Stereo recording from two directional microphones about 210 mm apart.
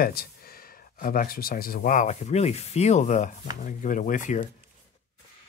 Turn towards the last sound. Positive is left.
turn(degrees=40)  # may be behind; listen again after turning